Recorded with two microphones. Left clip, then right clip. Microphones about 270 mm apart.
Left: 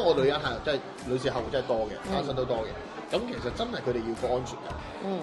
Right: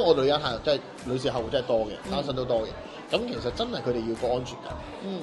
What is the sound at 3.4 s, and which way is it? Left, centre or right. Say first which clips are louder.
Speech: right 2 dB; right.